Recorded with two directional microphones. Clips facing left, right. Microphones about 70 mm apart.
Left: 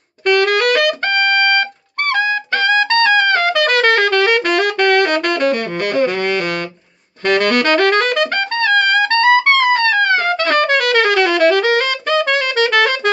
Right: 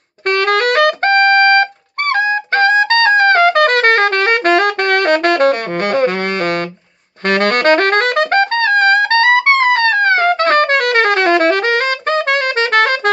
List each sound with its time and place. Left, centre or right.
0.3 s music: right
2.1 s trumpet: right
7.2 s music: right